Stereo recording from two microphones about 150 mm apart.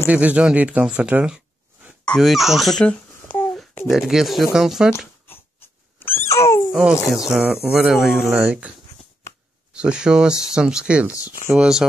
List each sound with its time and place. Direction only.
0.1 s speech: 10° right (ahead or behind)
5.9 s dog: 15° left (ahead or behind)
6.7 s speech: 5° right (ahead or behind)
9.8 s speech: 5° right (ahead or behind)
11.1 s speech: 25° left (ahead or behind)
11.5 s speech: 5° right (ahead or behind)